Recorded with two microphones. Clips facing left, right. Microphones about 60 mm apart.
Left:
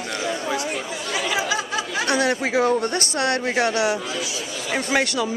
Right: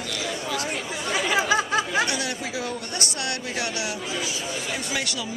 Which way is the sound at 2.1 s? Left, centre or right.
Left.